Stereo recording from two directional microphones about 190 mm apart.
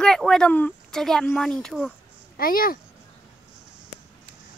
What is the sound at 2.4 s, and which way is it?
Speech, 50° left (ahead or behind).